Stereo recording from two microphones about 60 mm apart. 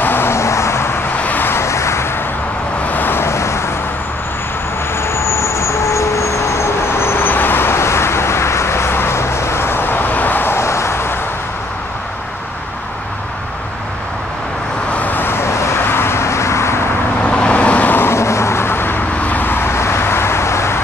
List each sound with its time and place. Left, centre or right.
0.0 s vehicle: left
1.1 s vehicle: left
2.9 s vehicle: left
4.9 s vehicle: left
15.0 s vehicle: left
17.2 s vehicle: centre
17.9 s vehicle: left